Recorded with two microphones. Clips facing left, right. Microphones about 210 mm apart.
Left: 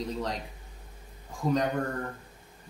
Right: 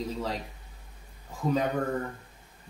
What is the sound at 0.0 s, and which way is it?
Speech, 5° right (ahead or behind).